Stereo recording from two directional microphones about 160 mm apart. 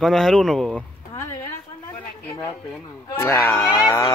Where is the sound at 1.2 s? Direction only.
15° left (ahead or behind).